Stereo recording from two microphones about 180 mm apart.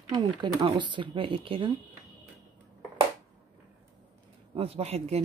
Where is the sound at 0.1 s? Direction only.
25° right (ahead or behind).